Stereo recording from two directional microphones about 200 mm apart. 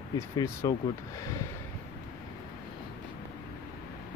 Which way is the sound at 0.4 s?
15° left (ahead or behind).